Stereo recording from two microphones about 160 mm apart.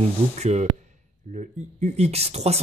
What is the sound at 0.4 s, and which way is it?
Speech, 45° right (ahead or behind).